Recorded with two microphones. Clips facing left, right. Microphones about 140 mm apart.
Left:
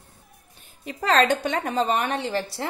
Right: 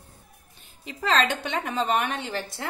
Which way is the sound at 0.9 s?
45° left (ahead or behind).